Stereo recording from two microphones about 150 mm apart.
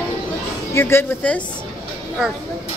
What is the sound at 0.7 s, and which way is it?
Speech, 15° left (ahead or behind).